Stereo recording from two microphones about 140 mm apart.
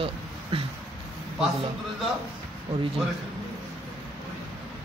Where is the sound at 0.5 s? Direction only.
45° right (ahead or behind).